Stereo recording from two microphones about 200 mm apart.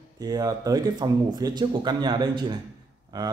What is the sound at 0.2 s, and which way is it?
Speech, 20° right (ahead or behind).